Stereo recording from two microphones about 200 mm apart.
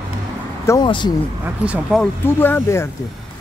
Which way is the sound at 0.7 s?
20° left (ahead or behind).